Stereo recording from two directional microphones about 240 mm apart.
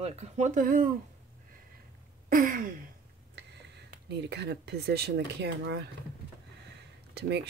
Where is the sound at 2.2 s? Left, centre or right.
Right.